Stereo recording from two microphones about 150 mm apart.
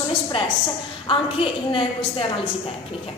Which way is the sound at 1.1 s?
35° left (ahead or behind).